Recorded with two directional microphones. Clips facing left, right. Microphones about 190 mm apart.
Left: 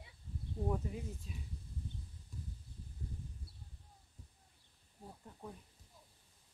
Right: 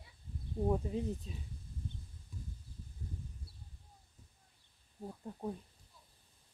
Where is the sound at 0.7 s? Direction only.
25° right (ahead or behind).